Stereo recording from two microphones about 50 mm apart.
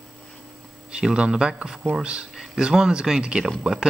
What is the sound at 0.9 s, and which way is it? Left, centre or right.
Speech, centre.